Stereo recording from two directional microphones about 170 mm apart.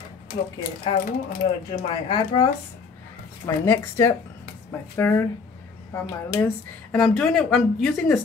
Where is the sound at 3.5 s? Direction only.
15° left (ahead or behind).